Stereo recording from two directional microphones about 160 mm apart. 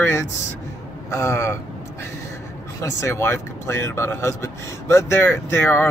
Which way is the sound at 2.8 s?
15° left (ahead or behind).